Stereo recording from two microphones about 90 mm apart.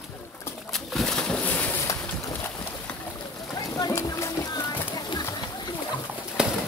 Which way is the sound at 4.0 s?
35° left (ahead or behind).